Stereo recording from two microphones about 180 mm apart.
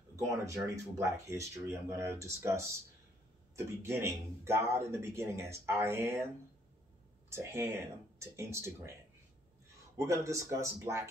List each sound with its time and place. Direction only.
0.1 s speech: 15° right (ahead or behind)
3.5 s speech: 15° right (ahead or behind)
7.2 s speech: 15° right (ahead or behind)
9.9 s speech: 15° right (ahead or behind)